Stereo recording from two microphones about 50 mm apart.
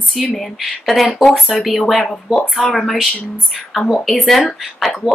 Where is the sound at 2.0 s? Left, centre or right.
Centre.